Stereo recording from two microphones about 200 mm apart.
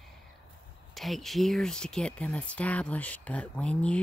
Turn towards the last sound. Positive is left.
turn(degrees=5)  # may be behind; listen again after turning